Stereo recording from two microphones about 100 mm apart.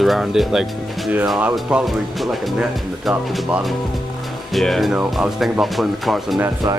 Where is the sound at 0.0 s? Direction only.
Centre (ahead or behind).